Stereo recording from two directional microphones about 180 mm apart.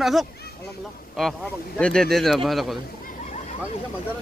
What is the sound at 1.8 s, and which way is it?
Speech, 5° left (ahead or behind).